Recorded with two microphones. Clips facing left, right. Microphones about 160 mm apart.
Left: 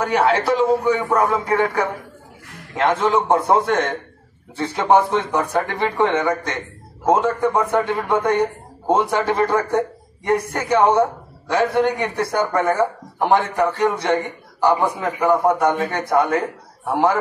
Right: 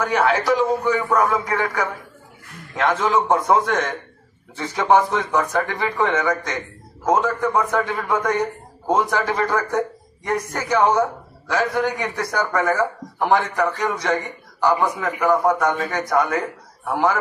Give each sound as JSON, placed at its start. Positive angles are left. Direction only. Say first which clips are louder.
{"t": 0.0, "sound": "a man's voice", "louder": "left 2 dB", "side_deg": 30}